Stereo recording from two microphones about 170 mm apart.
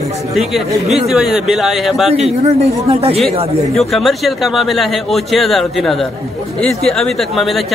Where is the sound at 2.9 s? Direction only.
35° right (ahead or behind).